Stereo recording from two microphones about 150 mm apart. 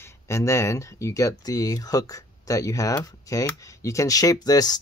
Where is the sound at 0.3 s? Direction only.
20° left (ahead or behind).